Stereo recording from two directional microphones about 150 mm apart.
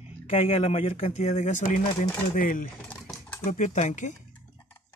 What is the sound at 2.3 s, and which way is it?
Speech, 65° left (ahead or behind).